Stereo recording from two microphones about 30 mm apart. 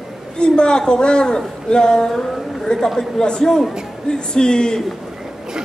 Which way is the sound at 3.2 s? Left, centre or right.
Left.